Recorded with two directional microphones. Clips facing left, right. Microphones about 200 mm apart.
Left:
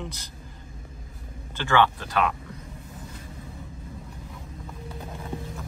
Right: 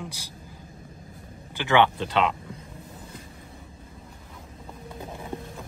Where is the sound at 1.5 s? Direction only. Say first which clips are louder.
Right 1 dB; 20° right (ahead or behind).